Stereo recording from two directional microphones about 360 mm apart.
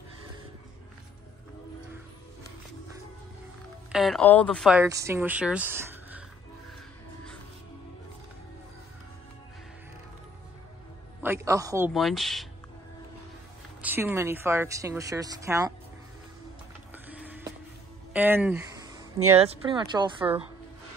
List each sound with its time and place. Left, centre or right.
3.9 s speech: centre
11.2 s speech: centre
13.7 s a woman's voice: centre
16.9 s music: centre
18.1 s a sound: centre
19.3 s a woman's voice: centre